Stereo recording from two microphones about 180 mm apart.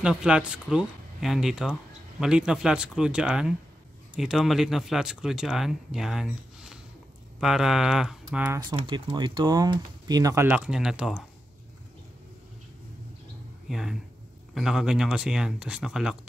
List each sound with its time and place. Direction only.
0.0 s speech: 5° right (ahead or behind)
8.8 s speech: 25° right (ahead or behind); by 11.2 s 5° right (ahead or behind)
13.7 s speech: centre (ahead or behind)